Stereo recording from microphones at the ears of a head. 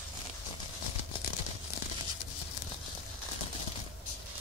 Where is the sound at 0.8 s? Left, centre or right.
Left.